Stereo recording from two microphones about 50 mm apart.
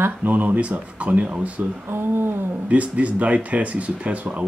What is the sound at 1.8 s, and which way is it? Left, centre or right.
Speech, right.